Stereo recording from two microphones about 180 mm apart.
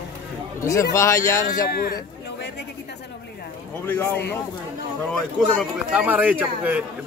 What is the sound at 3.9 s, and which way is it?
Speech, 10° left (ahead or behind).